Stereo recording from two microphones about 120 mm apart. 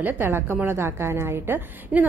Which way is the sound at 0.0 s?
15° right (ahead or behind).